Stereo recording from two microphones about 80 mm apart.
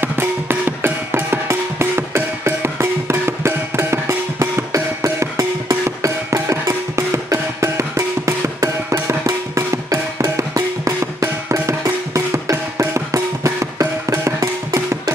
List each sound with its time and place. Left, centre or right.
0.0 s music: right